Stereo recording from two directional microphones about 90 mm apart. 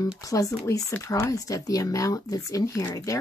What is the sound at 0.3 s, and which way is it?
Speech, 40° left (ahead or behind).